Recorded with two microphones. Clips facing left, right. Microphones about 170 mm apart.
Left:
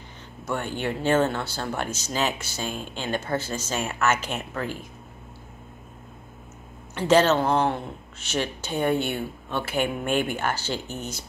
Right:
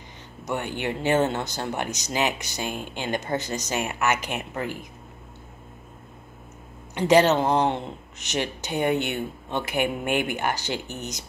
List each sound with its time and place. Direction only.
0.5 s speech: 15° right (ahead or behind)
7.0 s speech: 15° right (ahead or behind)